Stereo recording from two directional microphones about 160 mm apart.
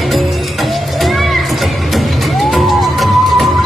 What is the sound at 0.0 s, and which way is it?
Music, centre (ahead or behind).